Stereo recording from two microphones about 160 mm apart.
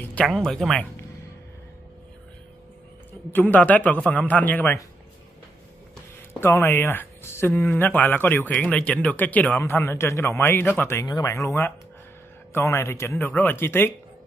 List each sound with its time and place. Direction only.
0.0 s music: 10° left (ahead or behind)
0.3 s speech: centre (ahead or behind)
3.3 s speech: 10° left (ahead or behind)
6.4 s speech: 15° left (ahead or behind)